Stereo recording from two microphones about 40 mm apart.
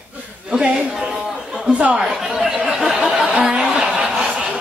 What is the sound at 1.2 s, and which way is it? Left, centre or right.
Chatter, centre.